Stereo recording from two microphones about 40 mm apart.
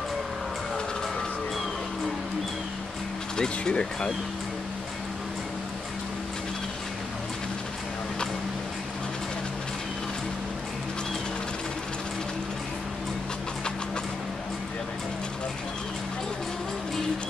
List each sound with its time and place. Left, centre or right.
3.3 s speech: left